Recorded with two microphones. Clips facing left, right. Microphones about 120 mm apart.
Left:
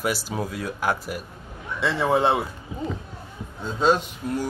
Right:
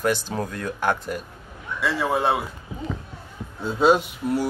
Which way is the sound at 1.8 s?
25° left (ahead or behind).